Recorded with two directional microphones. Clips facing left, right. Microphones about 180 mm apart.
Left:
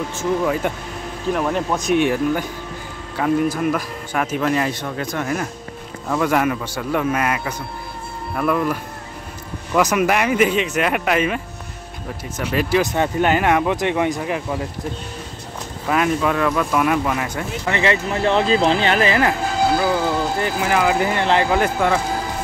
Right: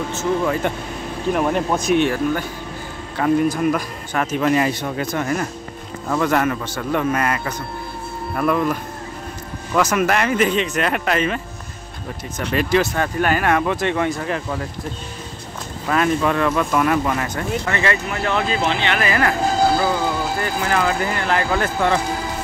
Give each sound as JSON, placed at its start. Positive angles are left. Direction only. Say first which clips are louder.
{"t": 0.1, "sound": "speech", "louder": "even", "side_deg": 10}
{"t": 1.3, "sound": "speech", "louder": "right 1 dB", "side_deg": -5}
{"t": 2.0, "sound": "speech", "louder": "left 1 dB", "side_deg": 15}
{"t": 4.4, "sound": "speech", "louder": "right 4 dB", "side_deg": -5}
{"t": 9.8, "sound": "speech", "louder": "left 1 dB", "side_deg": 15}
{"t": 12.8, "sound": "speech", "louder": "left 2 dB", "side_deg": 20}
{"t": 15.9, "sound": "speech", "louder": "even", "side_deg": 5}
{"t": 17.6, "sound": "speech", "louder": "left 4 dB", "side_deg": 20}
{"t": 18.1, "sound": "speech", "louder": "left 4 dB", "side_deg": 30}
{"t": 19.0, "sound": "speech", "louder": "left 2 dB", "side_deg": 20}
{"t": 20.3, "sound": "speech", "louder": "left 1 dB", "side_deg": 15}